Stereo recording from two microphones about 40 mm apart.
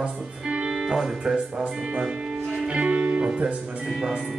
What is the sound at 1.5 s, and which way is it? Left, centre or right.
Speech, right.